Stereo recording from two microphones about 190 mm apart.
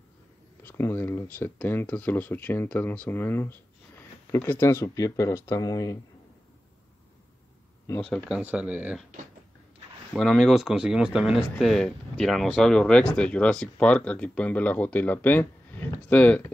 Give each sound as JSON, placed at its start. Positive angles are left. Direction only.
{"t": 0.6, "sound": "speech", "side_deg": 10}
{"t": 8.0, "sound": "speech", "side_deg": 5}
{"t": 8.4, "sound": "speech", "side_deg": -10}
{"t": 10.1, "sound": "speech", "side_deg": 0}